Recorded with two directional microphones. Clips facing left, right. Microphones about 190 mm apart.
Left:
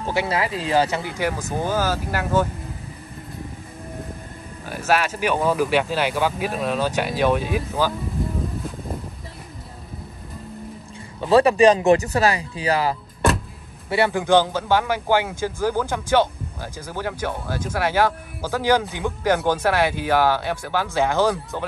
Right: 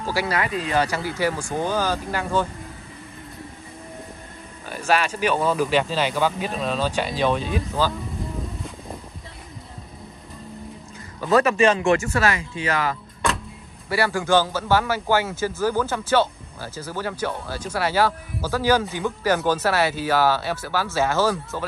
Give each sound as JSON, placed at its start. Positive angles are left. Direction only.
{"t": 0.0, "sound": "speech", "side_deg": 20}
{"t": 4.6, "sound": "speech", "side_deg": 5}
{"t": 11.1, "sound": "speech", "side_deg": 30}
{"t": 13.8, "sound": "a man's voice", "side_deg": 20}